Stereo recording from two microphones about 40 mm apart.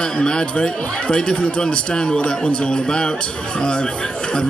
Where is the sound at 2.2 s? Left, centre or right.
Left.